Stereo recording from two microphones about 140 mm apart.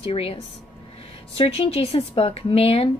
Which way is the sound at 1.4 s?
45° left (ahead or behind).